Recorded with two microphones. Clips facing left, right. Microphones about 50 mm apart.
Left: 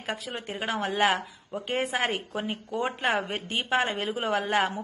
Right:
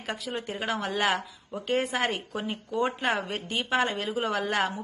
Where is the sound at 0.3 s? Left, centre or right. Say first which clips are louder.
Right 2 dB; left.